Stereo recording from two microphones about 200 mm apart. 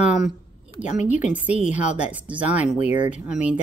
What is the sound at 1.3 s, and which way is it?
Speech, 5° right (ahead or behind).